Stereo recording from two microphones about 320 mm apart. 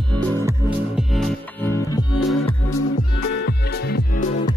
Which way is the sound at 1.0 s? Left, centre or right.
Centre.